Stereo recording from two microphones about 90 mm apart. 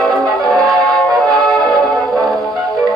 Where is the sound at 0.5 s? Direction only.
Centre (ahead or behind).